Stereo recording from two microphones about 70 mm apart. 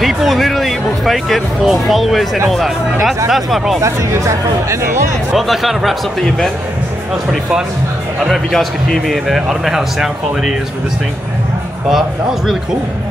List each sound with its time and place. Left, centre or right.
0.0 s music: centre
3.3 s speech: centre
3.8 s speech: right
5.3 s speech: centre
8.3 s speech: centre
11.9 s speech: centre